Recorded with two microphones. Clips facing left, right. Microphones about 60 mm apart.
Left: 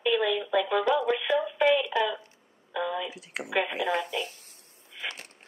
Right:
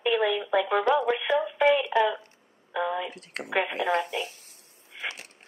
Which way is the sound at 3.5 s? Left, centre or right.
Right.